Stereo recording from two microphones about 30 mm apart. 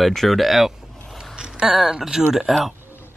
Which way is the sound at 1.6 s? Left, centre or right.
Centre.